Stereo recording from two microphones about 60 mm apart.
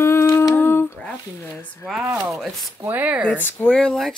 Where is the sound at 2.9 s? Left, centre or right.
Right.